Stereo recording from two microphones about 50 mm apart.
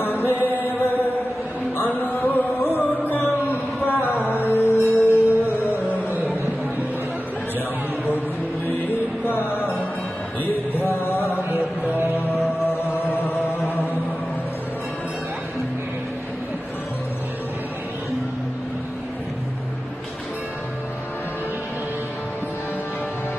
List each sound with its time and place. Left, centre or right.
0.0 s music: left
0.3 s music: right
1.8 s music: left
3.3 s a sound: left
4.3 s music: left
5.7 s a sound: left
6.0 s a sound: right
8.6 s music: left
12.9 s chant: left